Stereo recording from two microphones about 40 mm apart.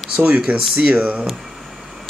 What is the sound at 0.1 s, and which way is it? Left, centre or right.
Speech, right.